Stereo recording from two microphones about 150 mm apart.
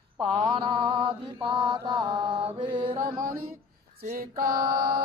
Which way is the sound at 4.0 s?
65° right (ahead or behind).